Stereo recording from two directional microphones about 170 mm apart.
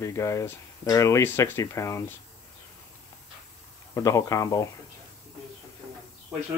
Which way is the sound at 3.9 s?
20° left (ahead or behind).